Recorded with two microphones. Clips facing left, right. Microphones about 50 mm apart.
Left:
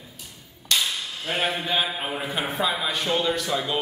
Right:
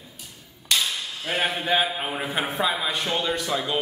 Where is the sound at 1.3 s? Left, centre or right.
Centre.